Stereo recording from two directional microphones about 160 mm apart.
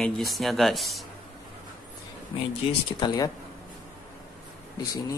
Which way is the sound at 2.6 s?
35° left (ahead or behind).